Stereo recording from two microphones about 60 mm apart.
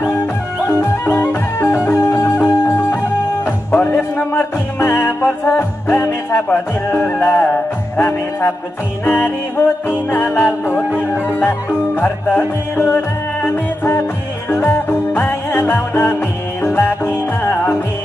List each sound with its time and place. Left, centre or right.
0.7 s music: left
4.3 s music: left